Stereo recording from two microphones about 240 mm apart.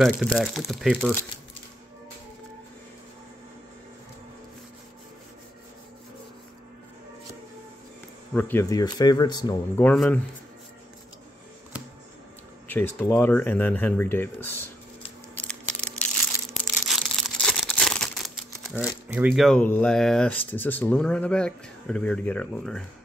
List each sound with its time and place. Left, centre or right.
0.0 s speech: centre
8.3 s speech: centre
12.6 s speech: centre
15.8 s crushing: centre
16.8 s crumpling: centre